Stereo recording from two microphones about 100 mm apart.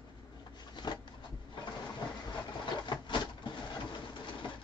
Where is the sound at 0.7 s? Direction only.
45° left (ahead or behind).